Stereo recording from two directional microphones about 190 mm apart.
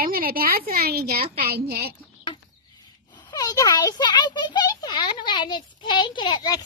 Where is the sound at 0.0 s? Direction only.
50° right (ahead or behind).